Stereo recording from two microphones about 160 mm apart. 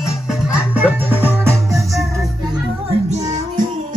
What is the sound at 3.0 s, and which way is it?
Music, 50° right (ahead or behind).